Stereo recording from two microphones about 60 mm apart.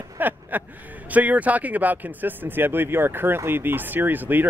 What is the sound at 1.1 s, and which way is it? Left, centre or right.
Speech, right.